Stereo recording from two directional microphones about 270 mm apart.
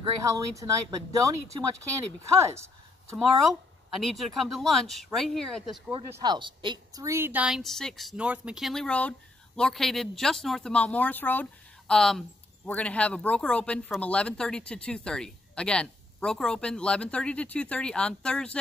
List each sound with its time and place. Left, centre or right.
0.2 s speech: centre
3.9 s speech: centre
5.9 s speech: centre